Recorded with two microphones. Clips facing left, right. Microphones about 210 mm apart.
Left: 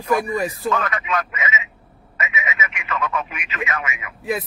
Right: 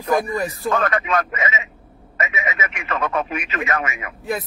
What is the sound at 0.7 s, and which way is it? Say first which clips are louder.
Speech: right 2 dB; 35° right (ahead or behind).